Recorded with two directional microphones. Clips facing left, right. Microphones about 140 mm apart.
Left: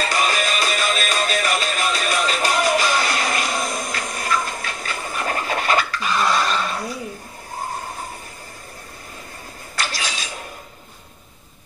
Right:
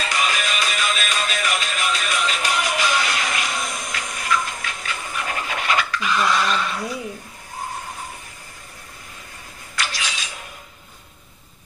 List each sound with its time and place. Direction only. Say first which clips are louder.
0.0 s music: left 3 dB; 40° left (ahead or behind)
9.8 s camera: left 1 dB; 35° left (ahead or behind)